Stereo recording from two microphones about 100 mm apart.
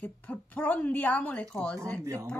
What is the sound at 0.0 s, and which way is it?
Speech, 15° left (ahead or behind).